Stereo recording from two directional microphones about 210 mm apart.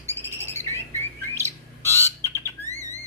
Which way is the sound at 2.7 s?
15° right (ahead or behind).